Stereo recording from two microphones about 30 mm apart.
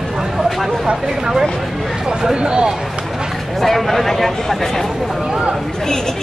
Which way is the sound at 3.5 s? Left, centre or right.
Centre.